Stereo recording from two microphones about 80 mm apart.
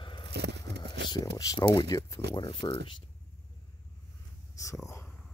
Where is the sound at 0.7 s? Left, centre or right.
Left.